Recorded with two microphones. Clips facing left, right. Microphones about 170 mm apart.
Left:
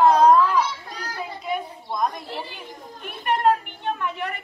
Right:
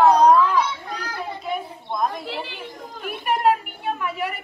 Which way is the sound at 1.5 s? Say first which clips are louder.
Left 1 dB; 5° right (ahead or behind).